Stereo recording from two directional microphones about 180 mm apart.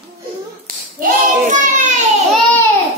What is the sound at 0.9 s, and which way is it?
Child singing, 50° right (ahead or behind).